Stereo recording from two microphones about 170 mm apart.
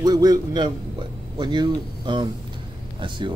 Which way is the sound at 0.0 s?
25° right (ahead or behind).